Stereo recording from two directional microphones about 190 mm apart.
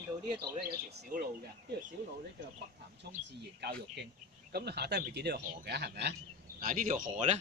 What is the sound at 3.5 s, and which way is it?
Speech, 60° right (ahead or behind).